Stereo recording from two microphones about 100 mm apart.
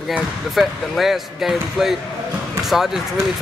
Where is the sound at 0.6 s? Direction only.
Centre (ahead or behind).